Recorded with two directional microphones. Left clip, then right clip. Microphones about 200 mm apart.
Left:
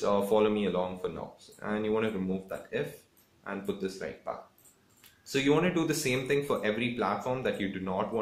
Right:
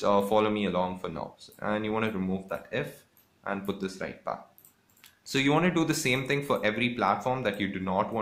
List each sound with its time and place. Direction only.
0.0 s speech: 30° right (ahead or behind)
5.3 s speech: 30° right (ahead or behind)